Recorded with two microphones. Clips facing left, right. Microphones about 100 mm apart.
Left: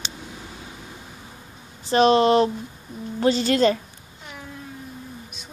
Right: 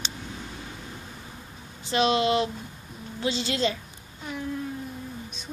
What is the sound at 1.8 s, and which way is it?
A woman's voice, 40° left (ahead or behind).